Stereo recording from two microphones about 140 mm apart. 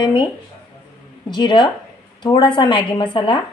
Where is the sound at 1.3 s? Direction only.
35° left (ahead or behind).